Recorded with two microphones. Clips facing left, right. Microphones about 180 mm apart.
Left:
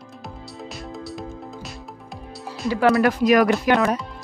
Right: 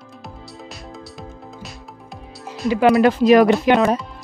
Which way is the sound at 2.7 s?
20° right (ahead or behind).